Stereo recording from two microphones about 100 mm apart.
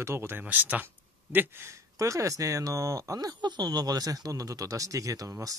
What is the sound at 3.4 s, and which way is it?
Speech, 45° right (ahead or behind).